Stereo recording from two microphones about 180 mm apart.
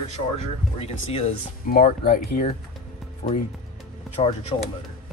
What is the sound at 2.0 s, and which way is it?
Speech, 50° left (ahead or behind).